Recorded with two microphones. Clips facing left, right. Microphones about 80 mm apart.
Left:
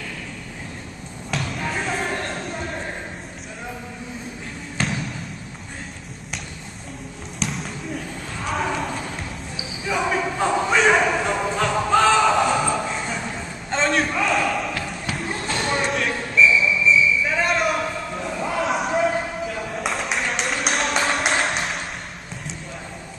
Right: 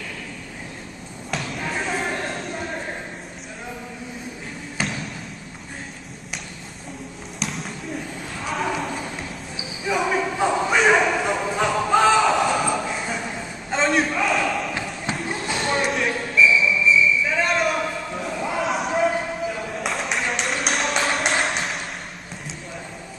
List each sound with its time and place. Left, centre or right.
1.3 s basketball bounce: centre
4.7 s basketball bounce: centre
7.3 s basketball bounce: centre
8.5 s clip-clop: centre
9.8 s a sound: centre
14.7 s basketball bounce: right
15.1 s a sound: centre